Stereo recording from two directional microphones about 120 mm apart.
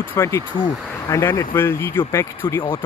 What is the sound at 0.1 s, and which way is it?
Speech, 20° left (ahead or behind).